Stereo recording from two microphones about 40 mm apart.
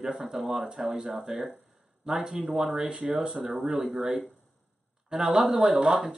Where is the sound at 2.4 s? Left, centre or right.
Right.